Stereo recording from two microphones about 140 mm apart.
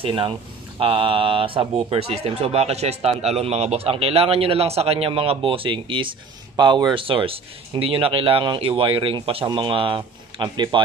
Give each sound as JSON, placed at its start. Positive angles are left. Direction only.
{"t": 0.0, "sound": "speech", "side_deg": -40}